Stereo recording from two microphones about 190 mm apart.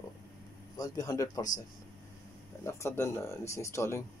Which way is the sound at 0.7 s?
20° left (ahead or behind).